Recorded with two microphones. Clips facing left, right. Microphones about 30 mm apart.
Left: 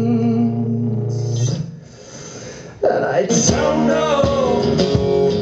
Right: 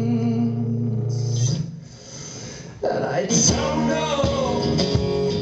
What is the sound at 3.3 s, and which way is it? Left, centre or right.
Music, centre.